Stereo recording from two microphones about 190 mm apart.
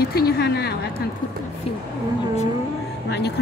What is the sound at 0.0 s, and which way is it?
Speech, 55° left (ahead or behind).